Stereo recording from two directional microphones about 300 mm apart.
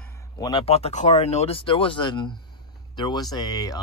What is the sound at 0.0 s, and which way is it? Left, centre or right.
Speech, centre.